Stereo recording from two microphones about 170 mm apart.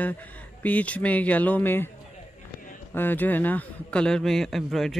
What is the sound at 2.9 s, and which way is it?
A man's voice, 10° left (ahead or behind).